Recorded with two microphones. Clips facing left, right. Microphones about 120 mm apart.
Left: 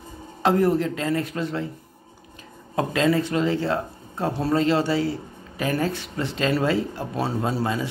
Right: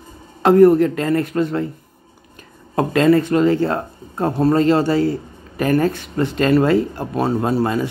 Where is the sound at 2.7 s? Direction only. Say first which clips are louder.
Right 7 dB; 55° right (ahead or behind).